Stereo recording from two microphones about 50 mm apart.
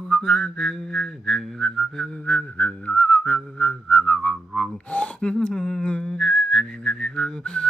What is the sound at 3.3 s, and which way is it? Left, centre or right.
Music, centre.